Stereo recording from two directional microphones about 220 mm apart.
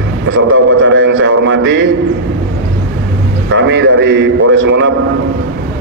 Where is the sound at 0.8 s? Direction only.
60° right (ahead or behind).